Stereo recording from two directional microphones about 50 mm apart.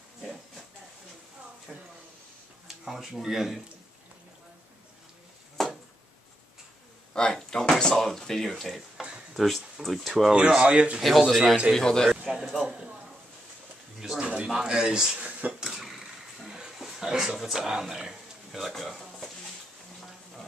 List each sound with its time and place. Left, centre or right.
1.7 s a sound: centre
2.7 s speech: centre
5.6 s a sound: centre
7.2 s drawer open or close: centre
8.5 s speech: centre
10.3 s speech: centre
11.0 s speech: centre
11.7 s a man's voice: centre
12.3 s speech: centre
14.2 s speech: right
15.1 s speech: right
15.6 s a sound: centre
16.7 s speech: centre